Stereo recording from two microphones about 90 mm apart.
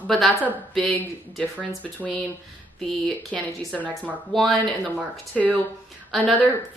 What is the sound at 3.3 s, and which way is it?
A woman's voice, centre (ahead or behind).